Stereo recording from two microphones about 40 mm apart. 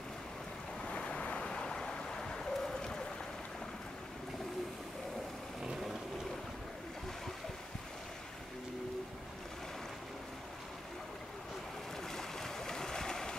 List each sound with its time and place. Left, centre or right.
0.8 s ocean: left
12.2 s boat: centre